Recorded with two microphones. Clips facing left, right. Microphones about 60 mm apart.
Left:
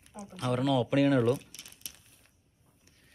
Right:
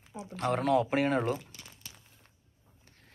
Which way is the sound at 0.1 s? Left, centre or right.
Right.